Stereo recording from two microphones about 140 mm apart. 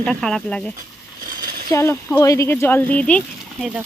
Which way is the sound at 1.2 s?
90° right.